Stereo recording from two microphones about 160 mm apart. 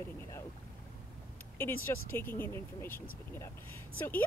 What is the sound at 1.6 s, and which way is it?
Speech, 15° left (ahead or behind).